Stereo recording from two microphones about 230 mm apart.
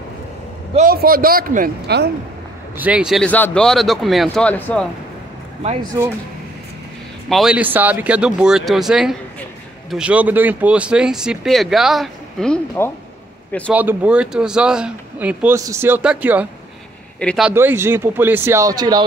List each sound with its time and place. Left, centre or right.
0.7 s a man's voice: right
2.8 s speech: centre
5.6 s speech: right
7.2 s speech: centre
13.7 s speech: centre